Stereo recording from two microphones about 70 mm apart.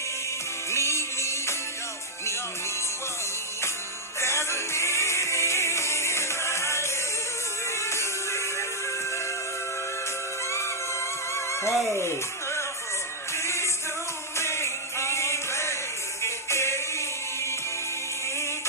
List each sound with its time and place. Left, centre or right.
0.7 s music: left
4.2 s music: left
11.3 s music: left
14.3 s chant: left